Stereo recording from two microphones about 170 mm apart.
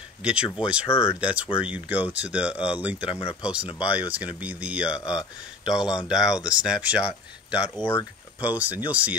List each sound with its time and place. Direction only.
0.2 s speech: 5° right (ahead or behind)
0.8 s speech: 35° left (ahead or behind)
1.2 s speech: 5° right (ahead or behind)
7.8 s speech: 15° left (ahead or behind)
8.4 s speech: 10° right (ahead or behind)